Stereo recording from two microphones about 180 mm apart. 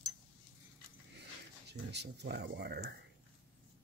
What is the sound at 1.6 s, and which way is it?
Speech, 70° right (ahead or behind).